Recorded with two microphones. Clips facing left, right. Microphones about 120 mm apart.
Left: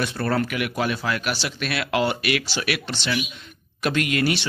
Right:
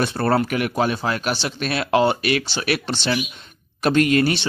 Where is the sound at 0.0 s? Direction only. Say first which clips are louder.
Right 4 dB; 35° right (ahead or behind).